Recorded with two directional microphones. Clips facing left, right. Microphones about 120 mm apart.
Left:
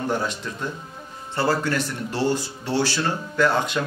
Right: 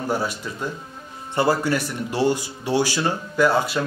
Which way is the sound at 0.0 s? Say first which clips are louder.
Right 1 dB; 10° right (ahead or behind).